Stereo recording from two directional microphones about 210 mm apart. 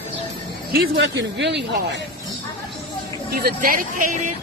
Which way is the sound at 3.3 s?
45° right (ahead or behind).